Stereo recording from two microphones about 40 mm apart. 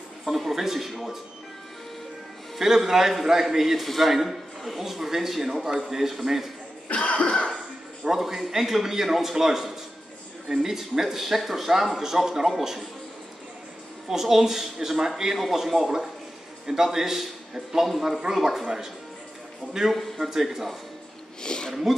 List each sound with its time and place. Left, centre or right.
0.2 s a man's voice: centre
2.6 s a man's voice: centre
6.9 s cough: left
8.0 s speech: centre
14.0 s a man's voice: centre
19.9 s speech: centre
20.2 s speech: centre
21.4 s speech: centre